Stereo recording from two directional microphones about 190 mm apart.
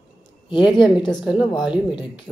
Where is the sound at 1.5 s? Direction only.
5° right (ahead or behind).